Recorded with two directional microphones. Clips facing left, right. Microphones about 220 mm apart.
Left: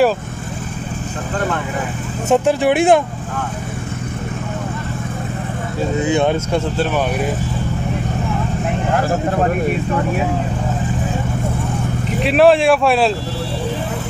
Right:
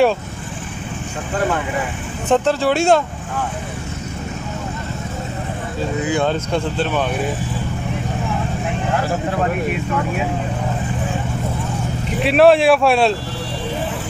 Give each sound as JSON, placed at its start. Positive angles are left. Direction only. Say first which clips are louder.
{"t": 2.2, "sound": "speech", "louder": "left 2 dB", "side_deg": 10}
{"t": 6.0, "sound": "speech", "louder": "left 3 dB", "side_deg": 25}
{"t": 6.3, "sound": "speech", "louder": "left 2 dB", "side_deg": 10}
{"t": 12.1, "sound": "speech", "louder": "even", "side_deg": 0}